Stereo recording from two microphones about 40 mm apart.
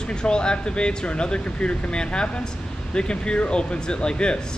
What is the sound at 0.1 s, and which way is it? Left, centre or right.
Speech, left.